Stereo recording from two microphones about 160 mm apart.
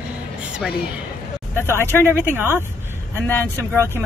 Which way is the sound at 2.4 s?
15° right (ahead or behind).